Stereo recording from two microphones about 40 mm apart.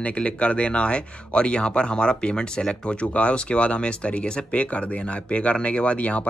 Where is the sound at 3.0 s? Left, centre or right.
Left.